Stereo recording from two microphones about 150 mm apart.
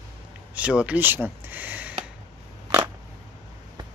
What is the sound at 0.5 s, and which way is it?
Speech, 10° right (ahead or behind).